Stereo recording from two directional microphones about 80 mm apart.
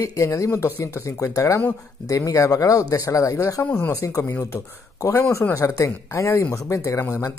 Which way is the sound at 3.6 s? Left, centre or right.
Left.